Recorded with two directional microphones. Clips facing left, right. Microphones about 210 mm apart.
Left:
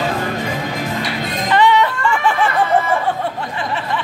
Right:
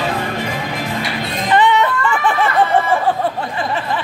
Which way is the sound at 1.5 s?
20° right (ahead or behind).